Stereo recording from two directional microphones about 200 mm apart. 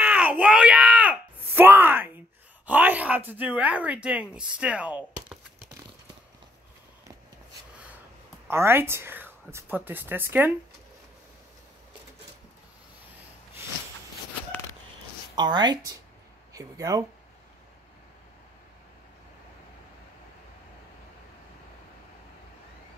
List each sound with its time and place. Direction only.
0.0 s a sound: 5° right (ahead or behind)
2.6 s speech: 10° right (ahead or behind)
8.5 s speech: 10° right (ahead or behind)
15.3 s speech: 20° right (ahead or behind)